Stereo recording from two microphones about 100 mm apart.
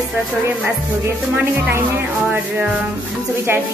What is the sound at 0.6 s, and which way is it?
Speech, 20° right (ahead or behind).